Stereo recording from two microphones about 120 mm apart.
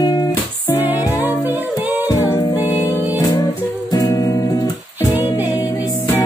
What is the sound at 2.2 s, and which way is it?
Music, 25° left (ahead or behind).